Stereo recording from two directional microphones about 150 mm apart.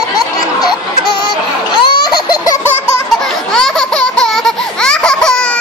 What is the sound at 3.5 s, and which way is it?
Baby laughter, 5° left (ahead or behind).